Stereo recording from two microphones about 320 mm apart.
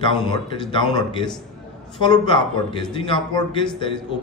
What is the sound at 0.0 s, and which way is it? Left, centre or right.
A man's voice, centre.